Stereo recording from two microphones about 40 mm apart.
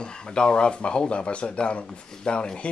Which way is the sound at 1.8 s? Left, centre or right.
Centre.